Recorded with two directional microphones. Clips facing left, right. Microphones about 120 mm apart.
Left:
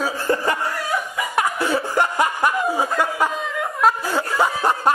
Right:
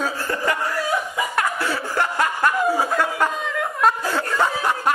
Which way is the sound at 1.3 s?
15° left (ahead or behind).